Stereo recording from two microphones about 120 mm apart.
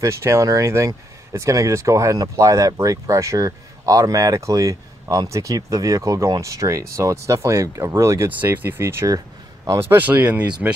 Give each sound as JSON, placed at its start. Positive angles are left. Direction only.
{"t": 0.0, "sound": "speech", "side_deg": -25}